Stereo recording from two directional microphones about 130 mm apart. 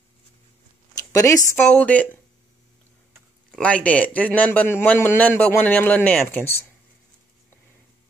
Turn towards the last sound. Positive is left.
turn(degrees=15)  # may be behind; listen again after turning